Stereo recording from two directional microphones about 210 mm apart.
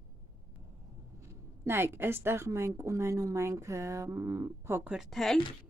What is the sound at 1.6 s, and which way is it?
A woman's voice, 10° right (ahead or behind).